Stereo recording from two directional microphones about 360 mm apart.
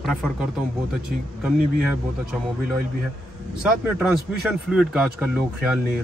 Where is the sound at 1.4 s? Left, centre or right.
Centre.